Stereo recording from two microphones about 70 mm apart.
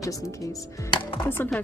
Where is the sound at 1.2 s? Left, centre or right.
Left.